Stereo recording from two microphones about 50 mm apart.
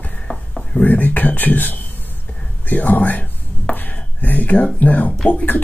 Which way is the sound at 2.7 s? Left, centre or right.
Left.